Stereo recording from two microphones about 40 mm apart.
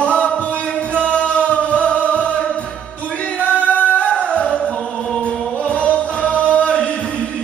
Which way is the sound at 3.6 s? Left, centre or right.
Left.